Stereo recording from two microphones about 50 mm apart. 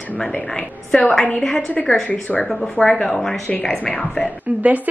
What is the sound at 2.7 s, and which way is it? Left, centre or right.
Speech, centre.